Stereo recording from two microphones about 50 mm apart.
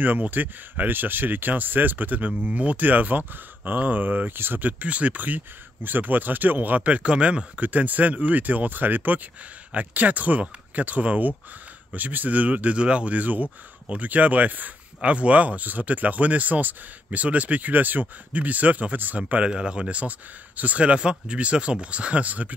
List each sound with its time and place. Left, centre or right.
0.0 s speech: right